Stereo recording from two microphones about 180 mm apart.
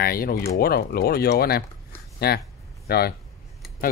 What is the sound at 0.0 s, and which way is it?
Speech, 55° left (ahead or behind).